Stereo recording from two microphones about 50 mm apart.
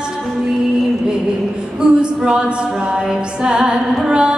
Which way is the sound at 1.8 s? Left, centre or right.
Centre.